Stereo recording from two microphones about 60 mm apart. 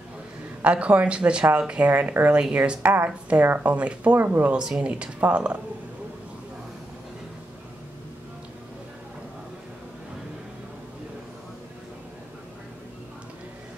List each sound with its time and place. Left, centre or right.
0.6 s speech: right
1.9 s speech: right
2.5 s speech: centre
2.8 s speech: right
4.5 s speech: centre